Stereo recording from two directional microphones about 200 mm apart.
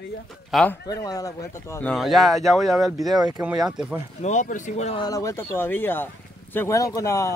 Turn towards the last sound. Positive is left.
turn(degrees=15)  # may be behind; listen again after turning